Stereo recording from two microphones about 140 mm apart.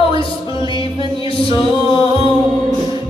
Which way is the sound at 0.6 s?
35° left (ahead or behind).